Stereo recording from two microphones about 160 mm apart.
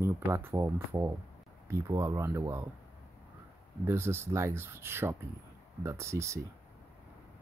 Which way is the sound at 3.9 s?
15° right (ahead or behind).